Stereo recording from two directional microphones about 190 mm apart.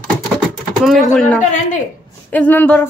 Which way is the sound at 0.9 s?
5° left (ahead or behind).